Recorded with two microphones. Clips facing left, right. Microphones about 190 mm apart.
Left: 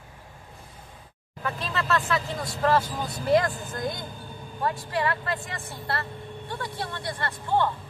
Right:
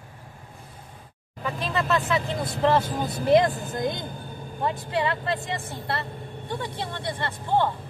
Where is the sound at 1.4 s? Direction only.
15° right (ahead or behind).